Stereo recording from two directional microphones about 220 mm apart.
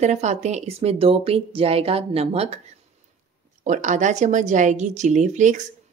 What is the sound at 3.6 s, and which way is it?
Speech, 35° right (ahead or behind).